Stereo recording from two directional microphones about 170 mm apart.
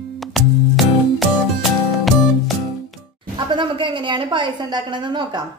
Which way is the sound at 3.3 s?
30° right (ahead or behind).